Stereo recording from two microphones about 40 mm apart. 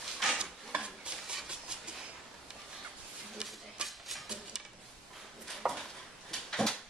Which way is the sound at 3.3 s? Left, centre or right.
Centre.